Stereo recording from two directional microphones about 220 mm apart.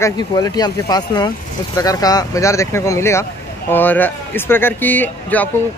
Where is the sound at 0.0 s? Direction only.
15° left (ahead or behind).